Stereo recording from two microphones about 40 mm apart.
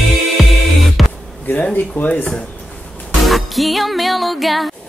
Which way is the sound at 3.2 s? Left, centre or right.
Centre.